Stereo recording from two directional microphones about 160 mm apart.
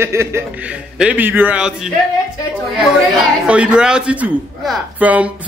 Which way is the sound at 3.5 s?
5° right (ahead or behind).